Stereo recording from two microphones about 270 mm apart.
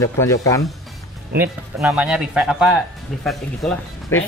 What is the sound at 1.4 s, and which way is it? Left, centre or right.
Speech, centre.